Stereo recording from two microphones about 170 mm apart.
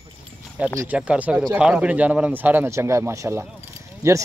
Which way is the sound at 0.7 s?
10° right (ahead or behind).